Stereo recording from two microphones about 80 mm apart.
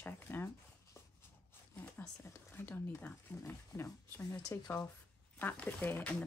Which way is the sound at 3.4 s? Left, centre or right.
Left.